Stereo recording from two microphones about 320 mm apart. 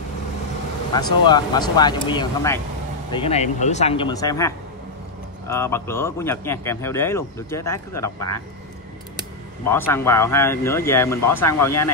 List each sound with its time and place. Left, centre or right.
0.9 s speech: centre
9.7 s speech: centre